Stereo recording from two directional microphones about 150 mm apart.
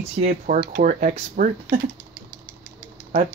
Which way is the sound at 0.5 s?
80° right.